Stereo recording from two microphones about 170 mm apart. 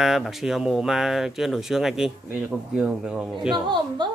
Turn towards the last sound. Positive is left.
turn(degrees=-25)  # may be behind; listen again after turning